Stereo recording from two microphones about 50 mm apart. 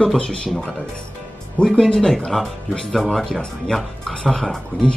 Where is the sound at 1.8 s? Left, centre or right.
Centre.